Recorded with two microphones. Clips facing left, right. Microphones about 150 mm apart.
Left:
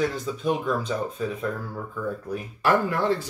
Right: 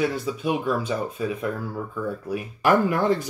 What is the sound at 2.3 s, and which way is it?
Speech, 15° right (ahead or behind).